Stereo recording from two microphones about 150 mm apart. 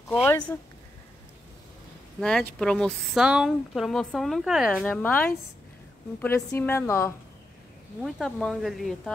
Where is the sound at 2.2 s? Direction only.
5° left (ahead or behind).